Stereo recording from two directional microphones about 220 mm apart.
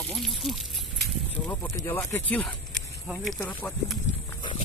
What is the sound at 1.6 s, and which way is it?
Speech, 10° left (ahead or behind).